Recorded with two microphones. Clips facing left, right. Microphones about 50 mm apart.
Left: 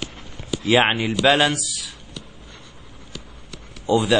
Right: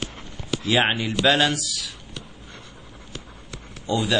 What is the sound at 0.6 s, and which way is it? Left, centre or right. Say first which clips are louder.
A man's voice: left 4 dB; centre.